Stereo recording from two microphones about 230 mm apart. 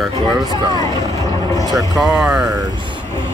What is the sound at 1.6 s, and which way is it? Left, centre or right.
Speech, centre.